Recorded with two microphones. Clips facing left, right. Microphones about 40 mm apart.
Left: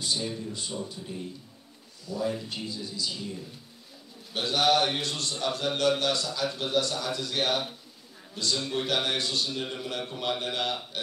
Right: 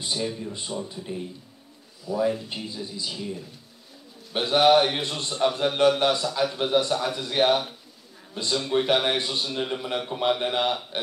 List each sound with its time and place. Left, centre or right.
0.0 s a man's voice: right
4.3 s a man's voice: right